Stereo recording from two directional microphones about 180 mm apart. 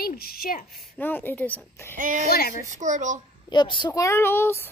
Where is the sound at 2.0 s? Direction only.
45° right (ahead or behind).